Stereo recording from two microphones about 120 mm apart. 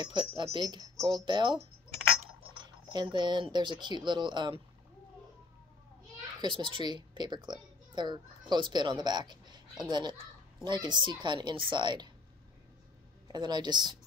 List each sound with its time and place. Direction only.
0.0 s speech: 40° right (ahead or behind)
6.4 s a woman's voice: 40° right (ahead or behind)
13.3 s speech: 35° right (ahead or behind)